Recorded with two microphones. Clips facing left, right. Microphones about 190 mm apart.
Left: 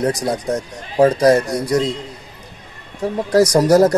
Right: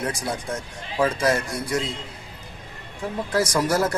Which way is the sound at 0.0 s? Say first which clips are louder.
Left 9 dB; 40° left (ahead or behind).